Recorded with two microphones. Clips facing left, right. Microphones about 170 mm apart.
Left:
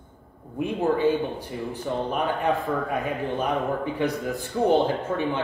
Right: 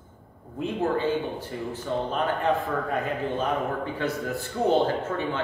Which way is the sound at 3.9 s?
15° left (ahead or behind).